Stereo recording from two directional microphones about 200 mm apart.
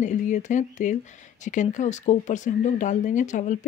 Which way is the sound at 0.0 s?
40° left (ahead or behind).